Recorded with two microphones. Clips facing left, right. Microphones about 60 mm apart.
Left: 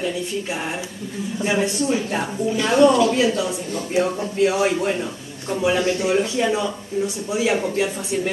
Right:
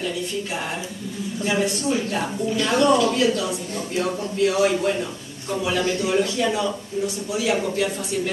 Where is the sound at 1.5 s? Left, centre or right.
Left.